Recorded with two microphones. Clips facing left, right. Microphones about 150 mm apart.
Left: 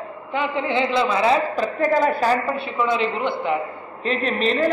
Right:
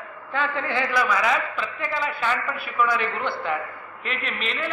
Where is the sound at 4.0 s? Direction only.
35° left (ahead or behind).